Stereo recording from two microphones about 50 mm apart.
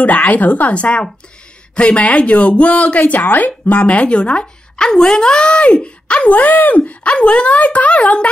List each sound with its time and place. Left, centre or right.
0.0 s speech: left
6.8 s speech: left